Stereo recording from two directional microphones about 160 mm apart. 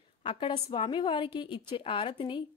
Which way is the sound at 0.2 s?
30° left (ahead or behind).